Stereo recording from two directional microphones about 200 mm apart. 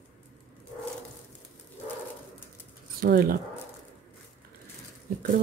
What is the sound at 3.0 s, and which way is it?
Speech, 45° right (ahead or behind).